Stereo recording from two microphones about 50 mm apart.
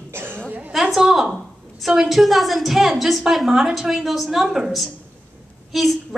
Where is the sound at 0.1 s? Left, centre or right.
Right.